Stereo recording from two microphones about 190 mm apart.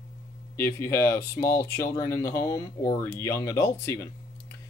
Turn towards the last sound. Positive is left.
turn(degrees=15)  # may be behind; listen again after turning